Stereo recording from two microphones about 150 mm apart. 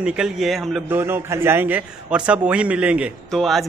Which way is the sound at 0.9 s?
15° right (ahead or behind).